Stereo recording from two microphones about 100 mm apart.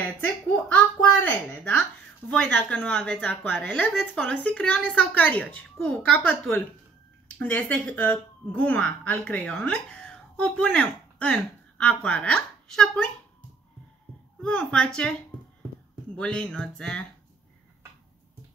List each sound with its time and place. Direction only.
0.0 s a woman's voice: 15° left (ahead or behind)
14.4 s speech: 10° left (ahead or behind)